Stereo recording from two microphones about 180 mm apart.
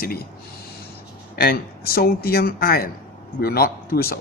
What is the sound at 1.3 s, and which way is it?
A man's voice, 55° left (ahead or behind).